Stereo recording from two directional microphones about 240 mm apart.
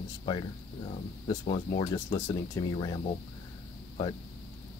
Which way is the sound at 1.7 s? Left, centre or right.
Centre.